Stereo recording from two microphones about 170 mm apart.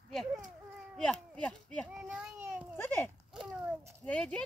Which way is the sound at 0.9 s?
5° left (ahead or behind).